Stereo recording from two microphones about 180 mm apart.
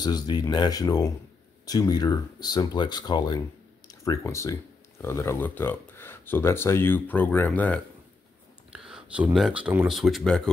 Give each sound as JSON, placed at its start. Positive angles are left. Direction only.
{"t": 0.0, "sound": "speech", "side_deg": 25}
{"t": 8.7, "sound": "speech", "side_deg": -5}